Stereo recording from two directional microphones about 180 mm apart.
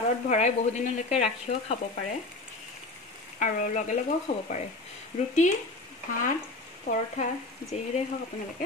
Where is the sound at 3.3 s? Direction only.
45° left (ahead or behind).